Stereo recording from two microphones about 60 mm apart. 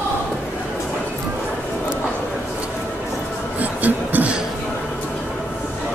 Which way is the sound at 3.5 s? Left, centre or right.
Right.